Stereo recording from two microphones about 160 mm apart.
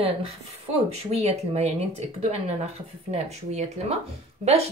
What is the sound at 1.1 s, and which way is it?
Speech, 40° right (ahead or behind).